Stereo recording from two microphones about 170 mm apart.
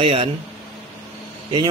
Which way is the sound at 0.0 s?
35° right (ahead or behind).